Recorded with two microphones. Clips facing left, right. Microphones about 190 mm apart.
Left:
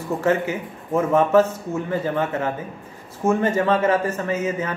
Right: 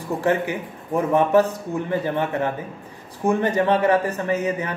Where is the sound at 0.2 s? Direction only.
15° right (ahead or behind).